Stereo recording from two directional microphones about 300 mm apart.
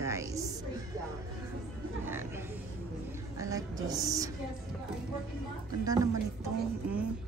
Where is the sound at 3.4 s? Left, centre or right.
Centre.